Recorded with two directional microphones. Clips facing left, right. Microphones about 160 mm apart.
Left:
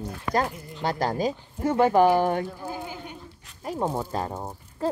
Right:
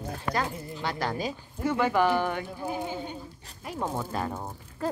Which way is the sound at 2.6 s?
20° right (ahead or behind).